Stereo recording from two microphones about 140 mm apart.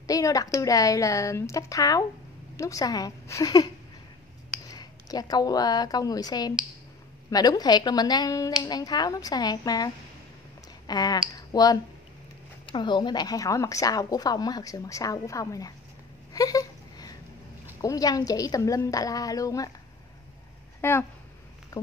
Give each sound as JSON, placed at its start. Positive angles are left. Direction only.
{"t": 0.0, "sound": "a woman's voice", "side_deg": 25}
{"t": 10.9, "sound": "a woman's voice", "side_deg": 30}
{"t": 16.3, "sound": "a sound", "side_deg": 25}
{"t": 17.8, "sound": "a woman's voice", "side_deg": 25}
{"t": 20.8, "sound": "speech", "side_deg": 15}